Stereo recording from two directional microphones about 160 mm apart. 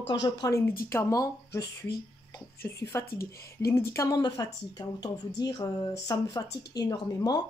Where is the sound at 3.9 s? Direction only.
25° left (ahead or behind).